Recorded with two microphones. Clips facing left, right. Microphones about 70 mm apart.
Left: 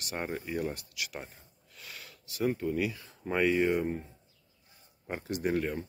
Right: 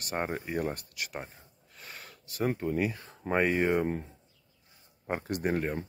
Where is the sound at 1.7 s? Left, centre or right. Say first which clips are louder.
Right 1 dB; right.